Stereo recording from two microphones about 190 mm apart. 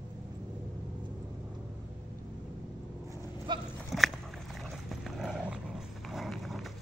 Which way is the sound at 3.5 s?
25° right (ahead or behind).